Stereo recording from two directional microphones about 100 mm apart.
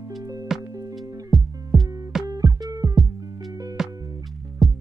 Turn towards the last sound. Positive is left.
turn(degrees=0)  # may be behind; listen again after turning